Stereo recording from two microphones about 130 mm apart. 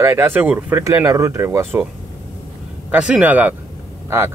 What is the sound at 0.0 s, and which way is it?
Speech, 20° right (ahead or behind).